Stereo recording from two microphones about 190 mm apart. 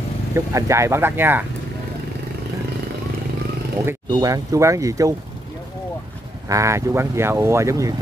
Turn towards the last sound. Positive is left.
turn(degrees=-15)  # may be behind; listen again after turning